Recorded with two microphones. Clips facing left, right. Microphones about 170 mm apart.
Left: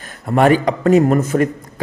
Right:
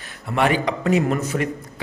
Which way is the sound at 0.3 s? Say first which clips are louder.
Left 7 dB; 45° left (ahead or behind).